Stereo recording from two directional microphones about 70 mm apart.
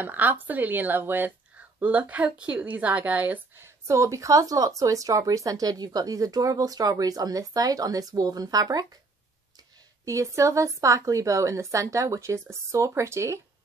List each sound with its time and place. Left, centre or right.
0.0 s a woman's voice: right
3.5 s speech: right
10.0 s a woman's voice: right